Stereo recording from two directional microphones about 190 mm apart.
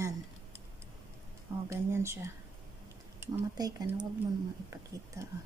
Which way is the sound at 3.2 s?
20° right (ahead or behind).